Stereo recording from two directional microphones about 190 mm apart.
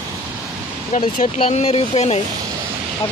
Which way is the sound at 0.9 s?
40° left (ahead or behind).